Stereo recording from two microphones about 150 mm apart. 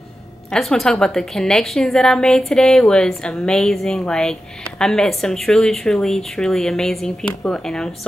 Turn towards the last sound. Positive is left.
turn(degrees=5)  # may be behind; listen again after turning